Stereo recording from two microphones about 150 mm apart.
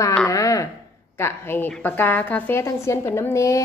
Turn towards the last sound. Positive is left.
turn(degrees=20)  # may be behind; listen again after turning